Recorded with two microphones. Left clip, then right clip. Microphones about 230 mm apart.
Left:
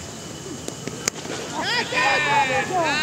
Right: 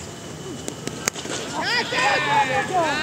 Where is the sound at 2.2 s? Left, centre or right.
Left.